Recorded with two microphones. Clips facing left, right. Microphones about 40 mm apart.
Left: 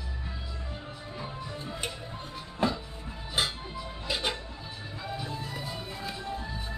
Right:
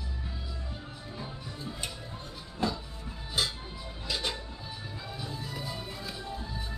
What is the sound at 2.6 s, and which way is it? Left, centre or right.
Music, left.